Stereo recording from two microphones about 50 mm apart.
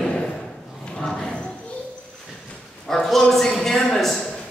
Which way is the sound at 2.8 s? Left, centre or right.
Centre.